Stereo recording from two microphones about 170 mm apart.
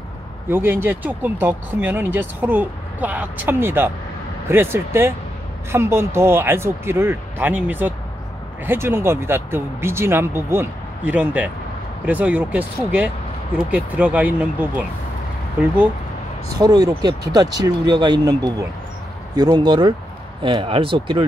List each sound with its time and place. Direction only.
0.5 s speech: 15° right (ahead or behind)
16.5 s speech: 20° right (ahead or behind)